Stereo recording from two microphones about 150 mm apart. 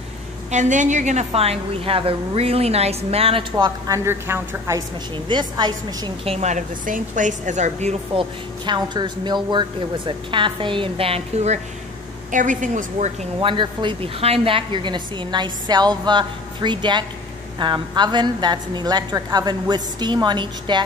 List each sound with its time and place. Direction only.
0.5 s a woman's voice: 55° right (ahead or behind); by 4.8 s 20° right (ahead or behind)
5.1 s a woman's voice: 30° right (ahead or behind)
6.3 s speech: 50° right (ahead or behind)
8.2 s a woman's voice: 30° right (ahead or behind); by 11.6 s 45° right (ahead or behind)
12.3 s speech: 60° right (ahead or behind)
13.4 s a woman's voice: 35° right (ahead or behind)